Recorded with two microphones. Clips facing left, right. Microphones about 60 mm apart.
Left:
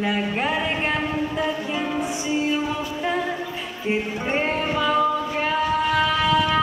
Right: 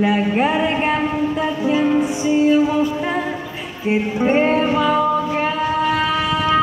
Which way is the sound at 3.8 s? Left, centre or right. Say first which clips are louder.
Right 7 dB; centre.